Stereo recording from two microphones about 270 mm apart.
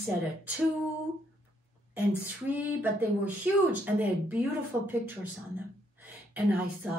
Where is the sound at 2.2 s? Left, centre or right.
Centre.